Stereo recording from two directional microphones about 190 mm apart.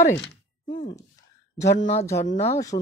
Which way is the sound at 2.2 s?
35° left (ahead or behind).